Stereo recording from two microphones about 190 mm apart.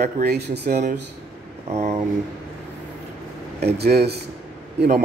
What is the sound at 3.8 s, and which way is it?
Speech, 60° right (ahead or behind).